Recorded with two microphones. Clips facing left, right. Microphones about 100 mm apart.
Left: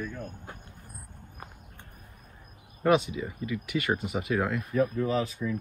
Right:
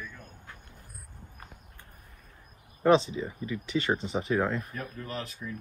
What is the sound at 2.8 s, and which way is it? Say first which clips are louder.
Speech: right 1 dB; 30° right (ahead or behind).